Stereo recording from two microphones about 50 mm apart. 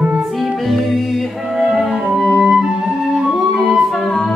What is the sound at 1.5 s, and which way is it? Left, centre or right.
Flute, centre.